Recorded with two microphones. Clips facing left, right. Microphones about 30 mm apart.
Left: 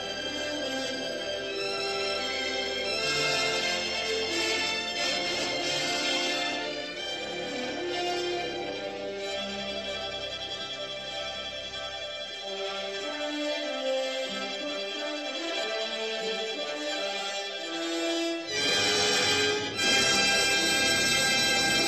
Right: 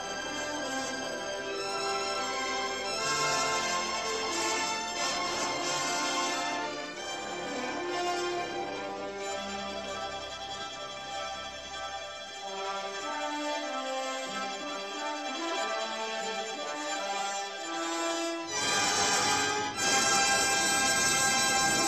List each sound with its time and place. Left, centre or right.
1.9 s music: left
7.9 s music: left
17.8 s music: left